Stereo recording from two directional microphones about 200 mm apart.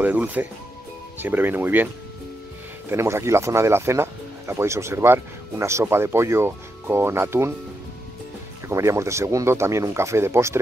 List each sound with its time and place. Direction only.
0.0 s speech: 10° right (ahead or behind)
2.9 s speech: 15° right (ahead or behind)
8.6 s speech: 15° right (ahead or behind)